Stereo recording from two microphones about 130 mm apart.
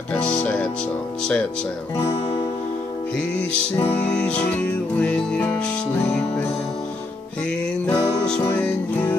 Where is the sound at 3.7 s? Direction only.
10° left (ahead or behind).